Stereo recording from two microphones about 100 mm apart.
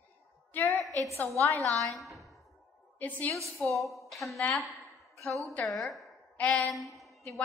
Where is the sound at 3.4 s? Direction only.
Centre (ahead or behind).